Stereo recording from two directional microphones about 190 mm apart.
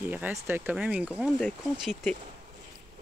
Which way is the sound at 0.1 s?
10° right (ahead or behind).